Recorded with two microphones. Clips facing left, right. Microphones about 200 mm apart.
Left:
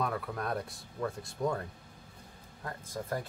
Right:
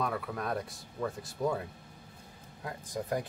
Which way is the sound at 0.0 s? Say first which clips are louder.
Even; centre (ahead or behind).